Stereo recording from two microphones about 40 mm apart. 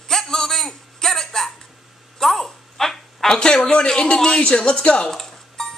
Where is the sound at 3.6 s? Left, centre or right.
Centre.